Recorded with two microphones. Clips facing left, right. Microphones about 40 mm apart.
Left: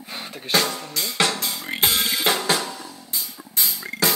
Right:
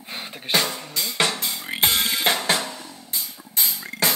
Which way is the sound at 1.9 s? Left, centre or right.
Centre.